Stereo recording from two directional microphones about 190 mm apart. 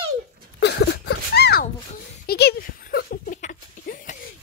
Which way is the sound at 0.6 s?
60° left (ahead or behind).